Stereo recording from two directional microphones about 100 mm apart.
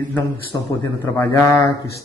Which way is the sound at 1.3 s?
30° left (ahead or behind).